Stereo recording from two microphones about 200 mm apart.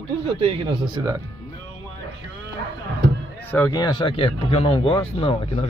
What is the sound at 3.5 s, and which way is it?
Speech, 15° left (ahead or behind).